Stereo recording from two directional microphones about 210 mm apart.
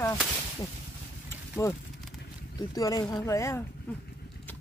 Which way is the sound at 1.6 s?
10° left (ahead or behind).